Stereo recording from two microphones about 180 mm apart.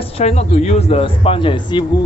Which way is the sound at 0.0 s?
35° left (ahead or behind).